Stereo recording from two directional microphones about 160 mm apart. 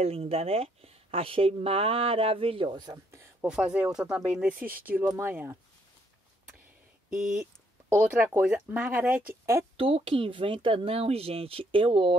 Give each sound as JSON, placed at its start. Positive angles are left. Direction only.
{"t": 0.0, "sound": "speech", "side_deg": -40}
{"t": 3.4, "sound": "speech", "side_deg": -5}
{"t": 7.1, "sound": "speech", "side_deg": -5}
{"t": 9.8, "sound": "speech", "side_deg": -35}